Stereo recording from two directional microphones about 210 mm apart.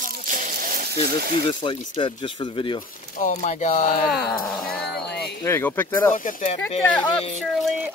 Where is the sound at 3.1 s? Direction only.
35° left (ahead or behind).